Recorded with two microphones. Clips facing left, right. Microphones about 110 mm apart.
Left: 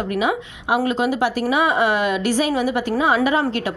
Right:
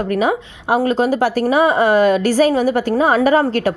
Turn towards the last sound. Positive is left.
turn(degrees=-45)  # may be behind; listen again after turning